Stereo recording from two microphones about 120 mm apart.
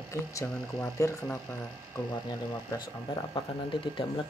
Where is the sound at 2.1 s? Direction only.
35° left (ahead or behind).